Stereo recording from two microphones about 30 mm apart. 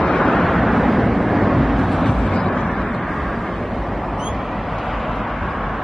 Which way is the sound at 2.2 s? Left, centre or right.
Left.